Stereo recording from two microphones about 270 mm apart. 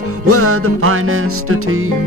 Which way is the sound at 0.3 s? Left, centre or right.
Right.